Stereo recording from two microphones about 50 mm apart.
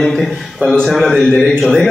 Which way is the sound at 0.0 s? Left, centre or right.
Centre.